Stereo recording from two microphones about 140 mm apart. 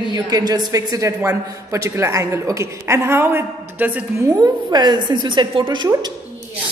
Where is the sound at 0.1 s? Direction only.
30° right (ahead or behind); by 4.3 s 10° right (ahead or behind).